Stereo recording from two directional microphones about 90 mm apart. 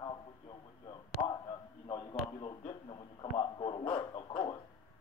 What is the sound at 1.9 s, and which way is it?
Radio, 55° left (ahead or behind).